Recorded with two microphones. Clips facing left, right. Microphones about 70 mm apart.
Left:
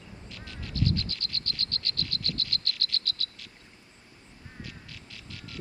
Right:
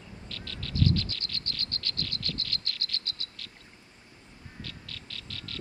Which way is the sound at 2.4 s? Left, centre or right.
Right.